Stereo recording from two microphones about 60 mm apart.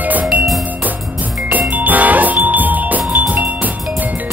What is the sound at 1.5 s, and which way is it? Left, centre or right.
Music, right.